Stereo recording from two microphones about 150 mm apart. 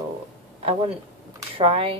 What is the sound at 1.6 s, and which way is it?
Speech, 40° right (ahead or behind).